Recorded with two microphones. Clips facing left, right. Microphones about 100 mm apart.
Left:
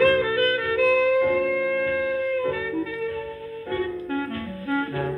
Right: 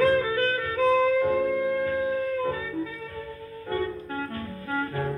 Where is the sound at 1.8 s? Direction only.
35° right (ahead or behind).